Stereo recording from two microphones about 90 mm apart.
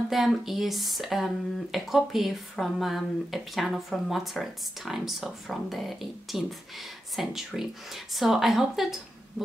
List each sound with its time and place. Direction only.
0.1 s speech: 5° right (ahead or behind)